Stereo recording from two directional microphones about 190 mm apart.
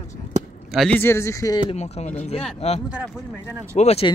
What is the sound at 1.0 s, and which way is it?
Speech, 15° left (ahead or behind).